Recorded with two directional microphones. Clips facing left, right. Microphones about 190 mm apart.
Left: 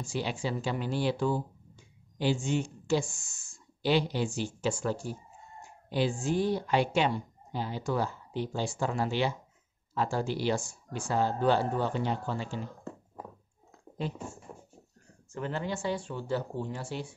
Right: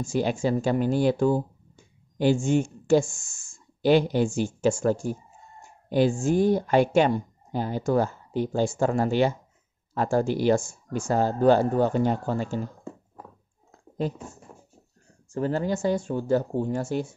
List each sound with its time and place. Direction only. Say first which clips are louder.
0.0 s speech: right 8 dB; 45° right (ahead or behind)
14.0 s speech: right 6 dB; 40° right (ahead or behind)
15.3 s speech: right 8 dB; 40° right (ahead or behind)